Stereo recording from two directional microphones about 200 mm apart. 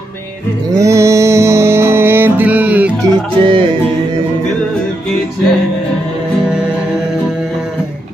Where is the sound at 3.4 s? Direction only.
25° right (ahead or behind).